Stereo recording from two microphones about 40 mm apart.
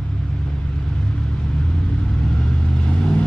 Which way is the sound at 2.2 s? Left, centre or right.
Centre.